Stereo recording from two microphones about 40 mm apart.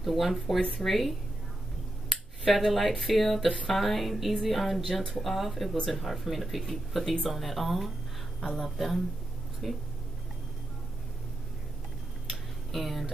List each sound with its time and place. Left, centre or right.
0.0 s speech: centre
2.4 s speech: centre
12.3 s tick: centre